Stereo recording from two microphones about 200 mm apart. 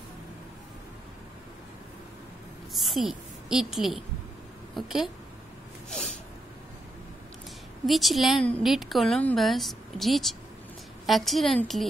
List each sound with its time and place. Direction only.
2.7 s a woman's voice: centre (ahead or behind)
7.8 s a woman's voice: centre (ahead or behind)